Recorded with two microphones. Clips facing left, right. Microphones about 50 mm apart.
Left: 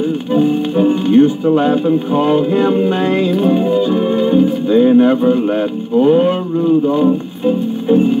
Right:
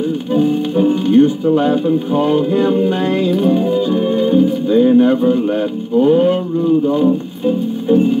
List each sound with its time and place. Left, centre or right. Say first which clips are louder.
0.3 s speech: left 1 dB; left